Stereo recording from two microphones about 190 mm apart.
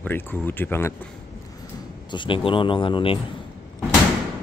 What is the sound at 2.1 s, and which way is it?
A man's voice, 25° left (ahead or behind).